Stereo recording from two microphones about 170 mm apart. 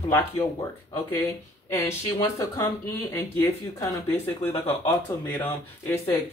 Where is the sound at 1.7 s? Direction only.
15° left (ahead or behind).